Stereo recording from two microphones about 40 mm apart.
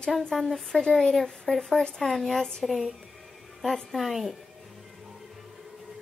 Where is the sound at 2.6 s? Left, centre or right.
Centre.